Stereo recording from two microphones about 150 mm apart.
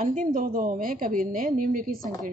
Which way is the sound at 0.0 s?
60° right (ahead or behind).